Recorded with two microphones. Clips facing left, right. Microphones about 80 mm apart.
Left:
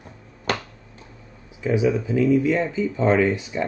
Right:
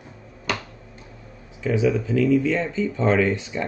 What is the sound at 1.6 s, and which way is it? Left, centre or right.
Speech, centre.